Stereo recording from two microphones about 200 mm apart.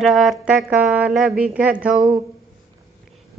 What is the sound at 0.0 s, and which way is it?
Speech, centre (ahead or behind).